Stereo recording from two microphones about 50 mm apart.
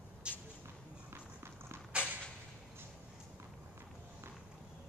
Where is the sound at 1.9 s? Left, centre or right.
Right.